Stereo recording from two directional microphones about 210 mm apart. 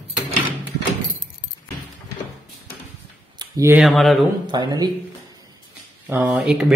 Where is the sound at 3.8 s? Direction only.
Centre (ahead or behind).